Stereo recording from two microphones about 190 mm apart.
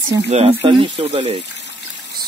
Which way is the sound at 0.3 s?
35° right (ahead or behind).